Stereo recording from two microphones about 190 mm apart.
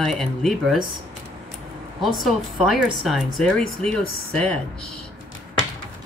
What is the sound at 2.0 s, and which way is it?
Speech, centre (ahead or behind).